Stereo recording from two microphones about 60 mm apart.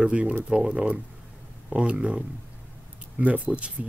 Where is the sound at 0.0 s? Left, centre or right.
Centre.